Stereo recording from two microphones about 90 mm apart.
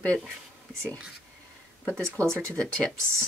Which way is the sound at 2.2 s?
30° right (ahead or behind).